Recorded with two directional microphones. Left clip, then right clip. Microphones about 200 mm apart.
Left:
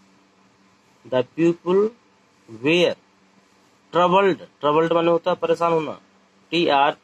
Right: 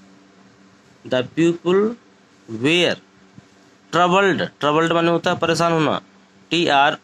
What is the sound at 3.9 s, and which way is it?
Speech, 40° right (ahead or behind).